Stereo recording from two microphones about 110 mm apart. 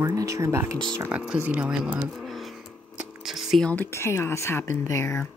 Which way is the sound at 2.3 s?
Centre (ahead or behind).